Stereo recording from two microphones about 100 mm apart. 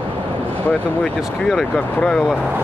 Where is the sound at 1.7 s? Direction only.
10° left (ahead or behind).